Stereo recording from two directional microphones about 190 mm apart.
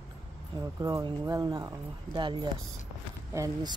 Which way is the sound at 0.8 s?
20° right (ahead or behind).